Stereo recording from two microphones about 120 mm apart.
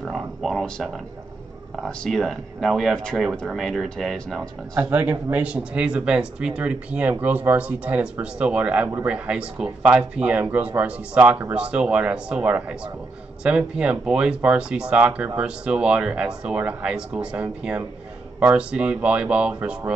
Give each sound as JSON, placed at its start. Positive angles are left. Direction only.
{"t": 0.0, "sound": "a sound", "side_deg": 0}
{"t": 1.8, "sound": "speech", "side_deg": 5}
{"t": 4.7, "sound": "speech", "side_deg": -15}